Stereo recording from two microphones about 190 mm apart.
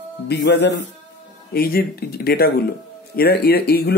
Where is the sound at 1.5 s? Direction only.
55° left (ahead or behind).